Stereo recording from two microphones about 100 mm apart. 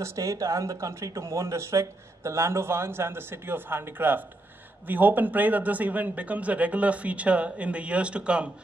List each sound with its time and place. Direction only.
0.0 s speech: 30° right (ahead or behind); by 8.5 s 10° right (ahead or behind)